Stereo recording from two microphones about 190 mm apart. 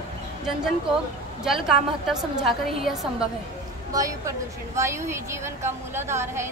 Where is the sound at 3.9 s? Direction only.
15° right (ahead or behind).